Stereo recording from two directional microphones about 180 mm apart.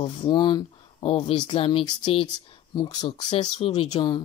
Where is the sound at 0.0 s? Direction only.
25° left (ahead or behind).